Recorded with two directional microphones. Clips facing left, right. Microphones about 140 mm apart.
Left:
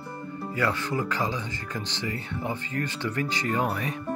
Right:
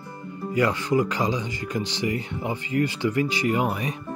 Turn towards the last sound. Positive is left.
turn(degrees=-15)  # may be behind; listen again after turning